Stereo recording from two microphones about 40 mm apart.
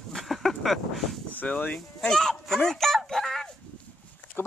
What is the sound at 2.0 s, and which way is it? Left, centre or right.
Speech, centre.